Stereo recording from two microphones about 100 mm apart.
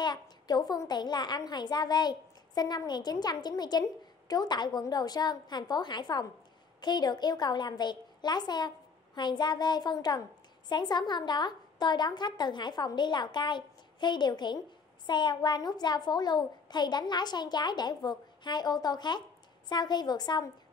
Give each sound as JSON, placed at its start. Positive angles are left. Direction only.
{"t": 0.0, "sound": "a child's voice", "side_deg": 45}